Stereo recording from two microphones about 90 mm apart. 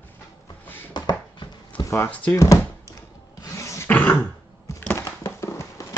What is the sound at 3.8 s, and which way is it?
Throat clearing, 20° left (ahead or behind).